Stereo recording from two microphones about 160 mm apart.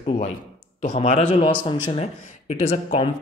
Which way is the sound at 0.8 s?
40° left (ahead or behind).